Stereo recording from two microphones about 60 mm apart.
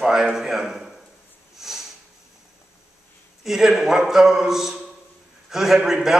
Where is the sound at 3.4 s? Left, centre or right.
Centre.